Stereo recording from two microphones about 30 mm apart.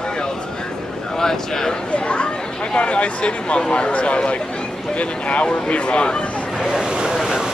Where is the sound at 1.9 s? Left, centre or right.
Left.